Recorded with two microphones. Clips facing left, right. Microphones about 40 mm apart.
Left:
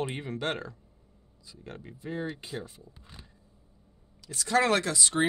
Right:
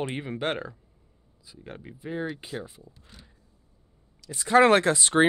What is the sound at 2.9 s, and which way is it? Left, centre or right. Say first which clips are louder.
Speech: left 1 dB; left.